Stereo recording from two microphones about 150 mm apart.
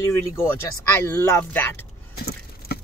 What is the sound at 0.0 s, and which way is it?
Speech, 20° left (ahead or behind).